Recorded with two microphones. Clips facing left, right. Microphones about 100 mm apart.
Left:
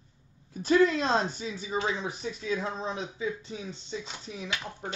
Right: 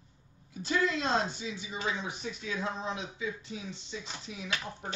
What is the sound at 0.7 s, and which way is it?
Speech, 40° left (ahead or behind).